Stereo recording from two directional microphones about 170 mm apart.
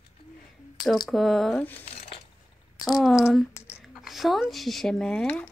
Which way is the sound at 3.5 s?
15° left (ahead or behind).